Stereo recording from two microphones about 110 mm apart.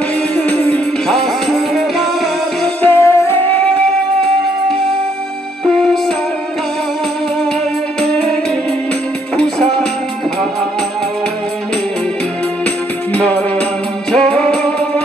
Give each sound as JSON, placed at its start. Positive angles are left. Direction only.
{"t": 0.4, "sound": "music", "side_deg": 10}
{"t": 2.8, "sound": "music", "side_deg": 20}
{"t": 8.0, "sound": "music", "side_deg": 5}
{"t": 9.4, "sound": "music", "side_deg": 5}
{"t": 13.1, "sound": "music", "side_deg": 10}